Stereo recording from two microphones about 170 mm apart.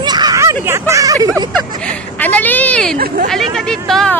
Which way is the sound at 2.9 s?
60° right (ahead or behind).